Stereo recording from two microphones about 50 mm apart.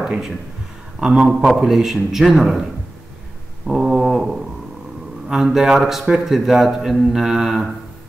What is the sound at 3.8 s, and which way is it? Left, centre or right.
Speech, centre.